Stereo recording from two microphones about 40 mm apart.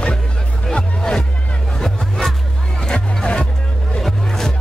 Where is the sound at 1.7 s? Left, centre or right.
Centre.